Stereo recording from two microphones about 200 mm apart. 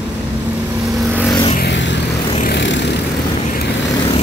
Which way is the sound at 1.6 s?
65° left (ahead or behind).